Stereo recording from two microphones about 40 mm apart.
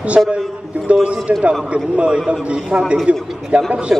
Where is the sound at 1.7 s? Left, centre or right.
Right.